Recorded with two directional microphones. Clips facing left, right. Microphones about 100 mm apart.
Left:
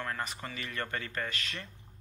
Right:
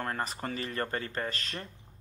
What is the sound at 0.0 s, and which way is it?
A man's voice, 40° right (ahead or behind).